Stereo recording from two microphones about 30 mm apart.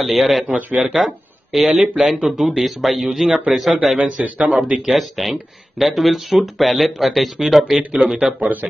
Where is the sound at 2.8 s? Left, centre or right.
Centre.